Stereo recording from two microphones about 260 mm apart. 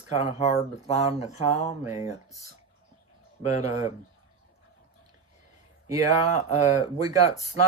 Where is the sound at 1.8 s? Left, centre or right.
Centre.